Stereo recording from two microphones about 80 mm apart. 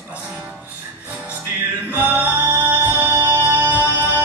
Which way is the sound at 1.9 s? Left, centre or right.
Centre.